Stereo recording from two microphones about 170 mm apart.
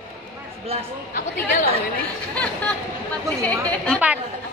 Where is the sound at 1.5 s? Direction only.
60° left (ahead or behind).